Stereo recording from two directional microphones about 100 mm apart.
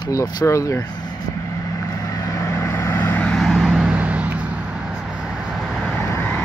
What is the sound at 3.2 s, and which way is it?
Vehicle, 5° left (ahead or behind).